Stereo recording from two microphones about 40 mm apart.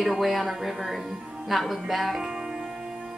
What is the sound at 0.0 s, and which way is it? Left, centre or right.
Speech, centre.